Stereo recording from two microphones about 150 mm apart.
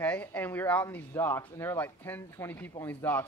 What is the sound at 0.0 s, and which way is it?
Speech, 10° left (ahead or behind).